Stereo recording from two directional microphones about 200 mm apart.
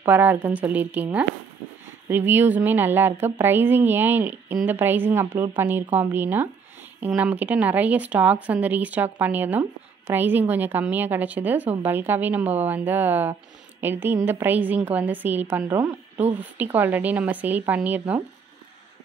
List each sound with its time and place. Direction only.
0.0 s speech: 10° right (ahead or behind)
5.3 s speech: 25° right (ahead or behind)
5.6 s speech: 10° right (ahead or behind)